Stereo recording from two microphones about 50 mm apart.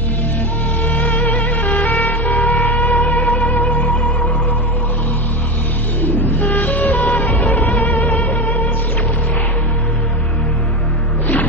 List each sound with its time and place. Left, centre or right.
0.8 s music: left
6.0 s music: left